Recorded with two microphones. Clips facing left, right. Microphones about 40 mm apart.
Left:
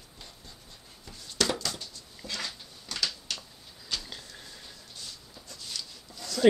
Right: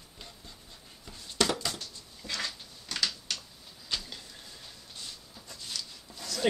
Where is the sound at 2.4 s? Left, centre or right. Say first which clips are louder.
Right 1 dB; centre.